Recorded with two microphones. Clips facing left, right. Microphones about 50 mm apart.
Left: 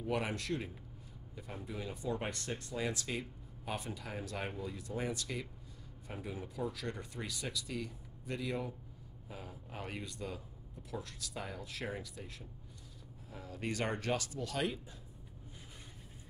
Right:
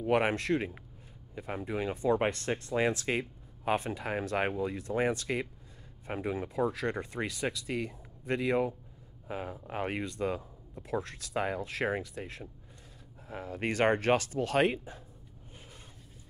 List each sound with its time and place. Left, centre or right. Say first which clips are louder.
0.0 s speech: right 9 dB; right